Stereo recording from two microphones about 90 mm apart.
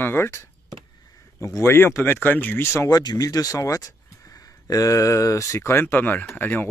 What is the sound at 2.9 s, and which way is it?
Speech, 45° left (ahead or behind).